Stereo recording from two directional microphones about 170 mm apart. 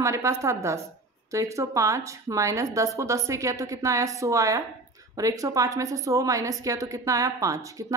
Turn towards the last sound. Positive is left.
turn(degrees=-20)  # may be behind; listen again after turning